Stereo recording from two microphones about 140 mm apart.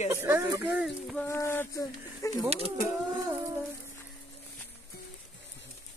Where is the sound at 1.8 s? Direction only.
25° left (ahead or behind).